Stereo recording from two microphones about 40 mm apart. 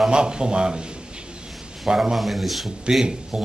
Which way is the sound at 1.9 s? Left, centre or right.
Centre.